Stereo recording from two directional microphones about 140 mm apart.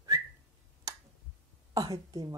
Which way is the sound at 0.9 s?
25° right (ahead or behind).